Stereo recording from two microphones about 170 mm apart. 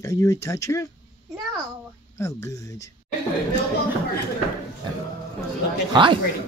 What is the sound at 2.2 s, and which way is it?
Speech, 20° left (ahead or behind).